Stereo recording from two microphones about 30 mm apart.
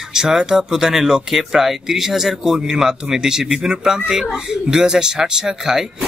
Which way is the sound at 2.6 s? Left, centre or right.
Right.